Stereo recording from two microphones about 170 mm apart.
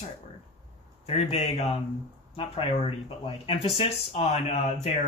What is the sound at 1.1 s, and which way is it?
Speech, 40° left (ahead or behind).